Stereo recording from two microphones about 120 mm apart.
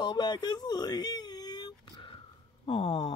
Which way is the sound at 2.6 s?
50° left (ahead or behind).